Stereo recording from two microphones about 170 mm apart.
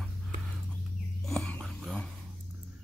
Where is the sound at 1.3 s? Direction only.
5° left (ahead or behind).